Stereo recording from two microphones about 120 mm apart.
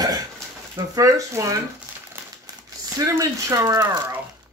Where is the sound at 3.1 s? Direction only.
25° right (ahead or behind).